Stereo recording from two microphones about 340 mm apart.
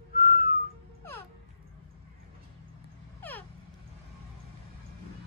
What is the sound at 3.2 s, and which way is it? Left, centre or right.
Vehicle, centre.